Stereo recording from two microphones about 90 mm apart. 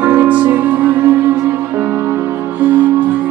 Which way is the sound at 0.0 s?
20° right (ahead or behind).